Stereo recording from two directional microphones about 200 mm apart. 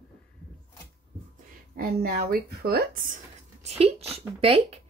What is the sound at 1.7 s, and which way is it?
A woman's voice, 50° right (ahead or behind).